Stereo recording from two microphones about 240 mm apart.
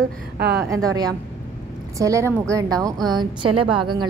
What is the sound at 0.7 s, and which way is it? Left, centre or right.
A woman's voice, centre.